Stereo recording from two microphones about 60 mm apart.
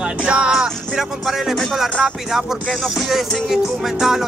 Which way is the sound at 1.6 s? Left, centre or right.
Centre.